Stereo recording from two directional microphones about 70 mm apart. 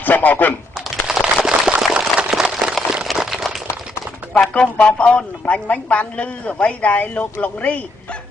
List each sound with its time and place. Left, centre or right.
0.0 s speech: left
1.0 s a sound: centre
4.3 s speech: centre